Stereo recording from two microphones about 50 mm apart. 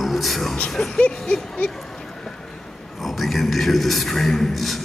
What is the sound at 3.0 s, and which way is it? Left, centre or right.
A man's voice, centre.